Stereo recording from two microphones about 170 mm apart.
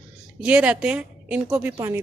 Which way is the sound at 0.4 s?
5° right (ahead or behind).